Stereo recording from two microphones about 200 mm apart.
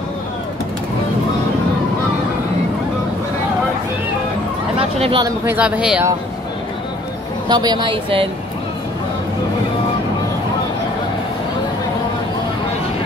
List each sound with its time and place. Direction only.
4.7 s a sound: 30° right (ahead or behind)
5.2 s speech: 10° right (ahead or behind)
7.4 s speech: 20° right (ahead or behind)